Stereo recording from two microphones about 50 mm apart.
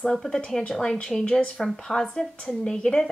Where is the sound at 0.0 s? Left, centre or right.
Centre.